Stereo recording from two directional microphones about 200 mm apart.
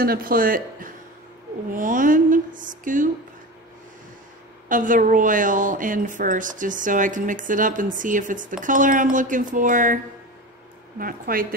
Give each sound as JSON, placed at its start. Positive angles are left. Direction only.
{"t": 0.0, "sound": "a woman's voice", "side_deg": -45}
{"t": 4.6, "sound": "a woman's voice", "side_deg": -40}
{"t": 11.0, "sound": "speech", "side_deg": -45}